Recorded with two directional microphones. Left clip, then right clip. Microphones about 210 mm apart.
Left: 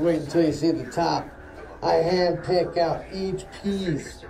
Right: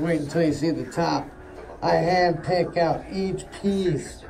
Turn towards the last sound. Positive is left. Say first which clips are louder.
# right 4 dB
turn(degrees=0)  # may be behind; listen again after turning